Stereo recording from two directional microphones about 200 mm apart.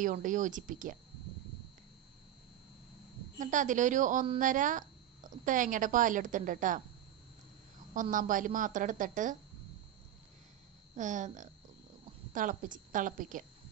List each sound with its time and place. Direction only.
0.0 s a woman's voice: 40° right (ahead or behind)
3.3 s a woman's voice: 40° right (ahead or behind)
7.9 s a woman's voice: 40° right (ahead or behind)
11.0 s a woman's voice: 40° right (ahead or behind)